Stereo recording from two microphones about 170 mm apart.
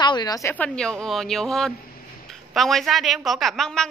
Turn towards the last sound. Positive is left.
turn(degrees=5)  # may be behind; listen again after turning